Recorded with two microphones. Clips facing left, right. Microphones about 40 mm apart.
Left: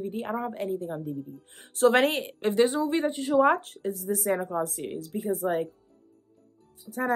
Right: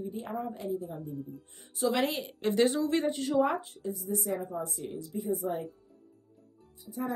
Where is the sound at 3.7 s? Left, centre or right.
Left.